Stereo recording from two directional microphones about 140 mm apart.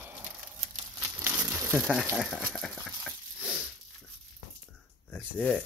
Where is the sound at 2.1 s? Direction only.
5° right (ahead or behind).